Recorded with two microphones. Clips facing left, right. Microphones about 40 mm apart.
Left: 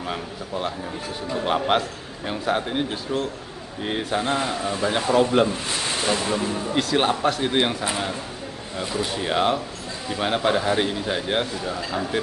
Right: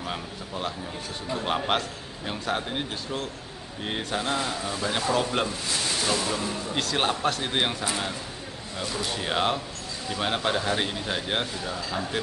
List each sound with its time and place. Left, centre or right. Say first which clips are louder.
0.0 s a man's voice: left 4 dB; centre
4.3 s speech: left 4 dB; left
5.1 s a man's voice: left 9 dB; centre
6.0 s speech: left 6 dB; left
6.7 s a man's voice: left 5 dB; centre
7.9 s a man's voice: left 3 dB; centre